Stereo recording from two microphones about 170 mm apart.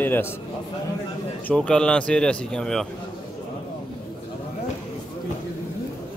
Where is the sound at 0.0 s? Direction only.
10° left (ahead or behind).